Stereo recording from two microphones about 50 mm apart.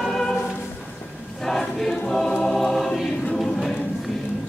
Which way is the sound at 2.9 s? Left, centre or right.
Centre.